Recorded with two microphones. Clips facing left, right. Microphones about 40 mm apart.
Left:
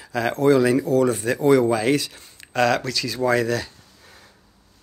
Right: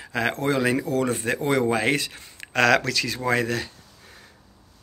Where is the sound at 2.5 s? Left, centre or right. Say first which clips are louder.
Right 1 dB; right.